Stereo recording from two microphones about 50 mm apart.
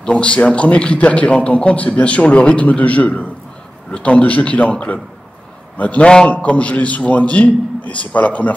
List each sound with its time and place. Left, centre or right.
0.0 s a man's voice: left